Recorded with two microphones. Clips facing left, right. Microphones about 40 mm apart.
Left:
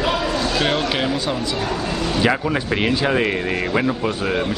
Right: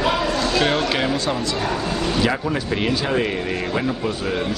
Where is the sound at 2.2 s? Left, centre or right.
Centre.